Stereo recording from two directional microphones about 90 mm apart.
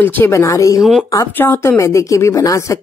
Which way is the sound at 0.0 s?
20° left (ahead or behind).